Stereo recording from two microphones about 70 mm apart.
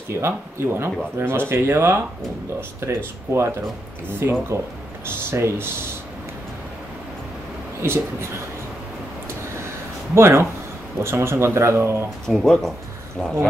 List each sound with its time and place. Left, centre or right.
0.1 s speech: right
7.8 s speech: right
10.1 s speech: right
12.3 s speech: centre